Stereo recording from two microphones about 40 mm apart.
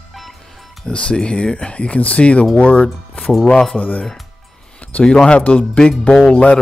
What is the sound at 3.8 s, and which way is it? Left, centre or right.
Speech, left.